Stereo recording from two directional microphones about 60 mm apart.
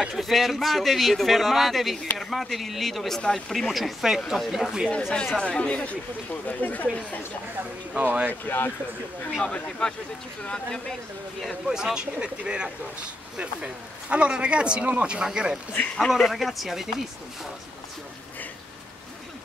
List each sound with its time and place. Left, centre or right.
0.1 s speech: centre
3.2 s speech: centre
3.5 s speech: centre
5.1 s speech: centre
7.9 s speech: right
8.3 s speech: left
9.4 s speech: centre
11.6 s speech: centre